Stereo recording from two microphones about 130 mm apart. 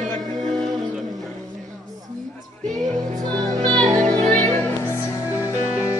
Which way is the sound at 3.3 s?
30° right (ahead or behind).